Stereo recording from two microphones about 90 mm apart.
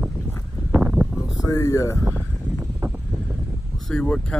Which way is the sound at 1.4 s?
40° left (ahead or behind).